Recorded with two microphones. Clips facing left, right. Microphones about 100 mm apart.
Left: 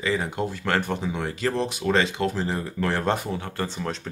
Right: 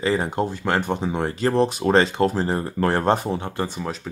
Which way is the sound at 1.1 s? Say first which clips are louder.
Right 8 dB; 35° right (ahead or behind).